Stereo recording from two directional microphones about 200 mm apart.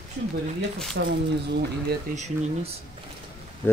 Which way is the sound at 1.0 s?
60° right (ahead or behind).